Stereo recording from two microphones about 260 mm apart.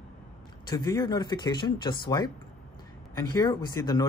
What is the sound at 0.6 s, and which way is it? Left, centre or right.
Speech, centre.